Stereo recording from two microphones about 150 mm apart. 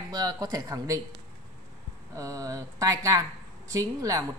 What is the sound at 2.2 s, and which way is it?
A woman's voice, 20° right (ahead or behind).